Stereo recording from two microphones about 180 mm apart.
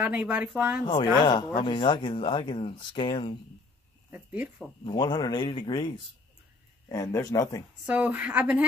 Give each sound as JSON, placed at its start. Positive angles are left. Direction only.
{"t": 0.0, "sound": "speech", "side_deg": -10}
{"t": 0.8, "sound": "speech", "side_deg": 25}
{"t": 4.1, "sound": "speech", "side_deg": -10}
{"t": 4.8, "sound": "speech", "side_deg": 25}
{"t": 7.8, "sound": "speech", "side_deg": -10}